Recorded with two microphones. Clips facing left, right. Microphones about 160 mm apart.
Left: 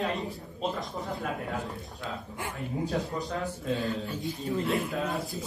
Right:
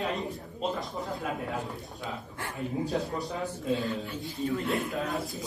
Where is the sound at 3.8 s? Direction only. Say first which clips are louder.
Left 2 dB; 20° left (ahead or behind).